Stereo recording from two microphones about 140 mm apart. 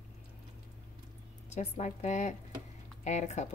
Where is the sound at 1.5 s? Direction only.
55° left (ahead or behind).